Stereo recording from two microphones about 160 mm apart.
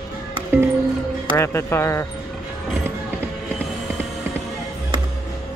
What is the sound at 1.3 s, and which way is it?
Speech, 15° left (ahead or behind).